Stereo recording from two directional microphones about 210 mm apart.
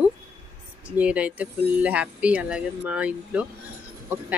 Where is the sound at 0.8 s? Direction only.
5° right (ahead or behind).